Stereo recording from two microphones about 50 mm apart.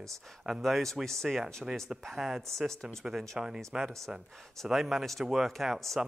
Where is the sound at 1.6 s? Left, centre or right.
Centre.